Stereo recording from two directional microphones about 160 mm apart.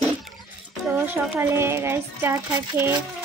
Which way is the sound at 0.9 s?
15° right (ahead or behind).